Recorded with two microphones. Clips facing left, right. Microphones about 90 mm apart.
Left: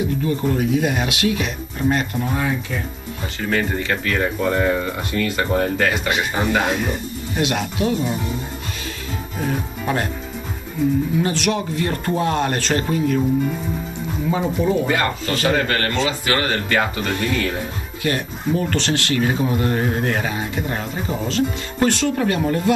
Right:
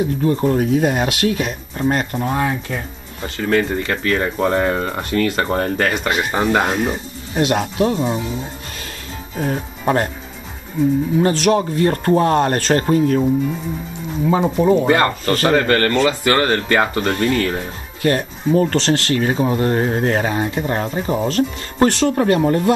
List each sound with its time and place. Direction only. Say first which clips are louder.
0.2 s speech: right 4 dB; 40° right (ahead or behind)
9.4 s speech: right 3 dB; 35° right (ahead or behind)
11.2 s speech: right 6 dB; 40° right (ahead or behind)
14.3 s speech: right 5 dB; 45° right (ahead or behind)